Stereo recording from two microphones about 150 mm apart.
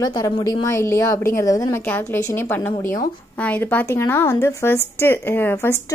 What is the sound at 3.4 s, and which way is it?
Speech, 10° left (ahead or behind).